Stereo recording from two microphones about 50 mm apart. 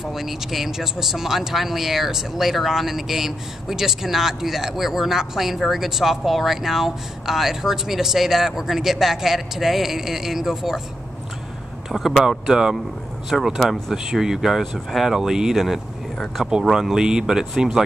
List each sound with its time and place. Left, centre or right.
0.0 s speech: centre
11.9 s speech: centre